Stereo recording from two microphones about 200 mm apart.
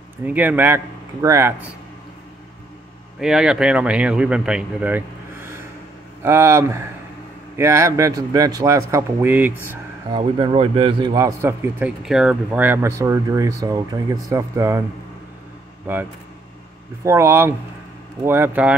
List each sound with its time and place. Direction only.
0.2 s speech: 10° right (ahead or behind)
3.2 s speech: 5° right (ahead or behind)
10.1 s a man's voice: 25° right (ahead or behind)
12.0 s speech: 5° right (ahead or behind)
15.9 s speech: 10° right (ahead or behind)